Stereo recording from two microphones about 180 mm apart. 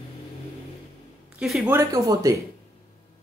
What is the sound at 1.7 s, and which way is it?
Speech, 20° right (ahead or behind).